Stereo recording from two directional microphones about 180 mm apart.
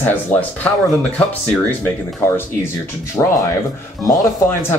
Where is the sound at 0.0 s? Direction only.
10° left (ahead or behind).